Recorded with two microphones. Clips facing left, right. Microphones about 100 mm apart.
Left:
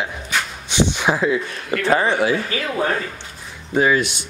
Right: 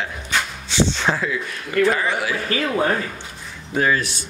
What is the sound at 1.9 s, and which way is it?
Speech, 30° left (ahead or behind).